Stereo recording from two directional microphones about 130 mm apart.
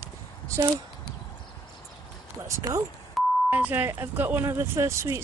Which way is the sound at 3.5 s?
15° right (ahead or behind).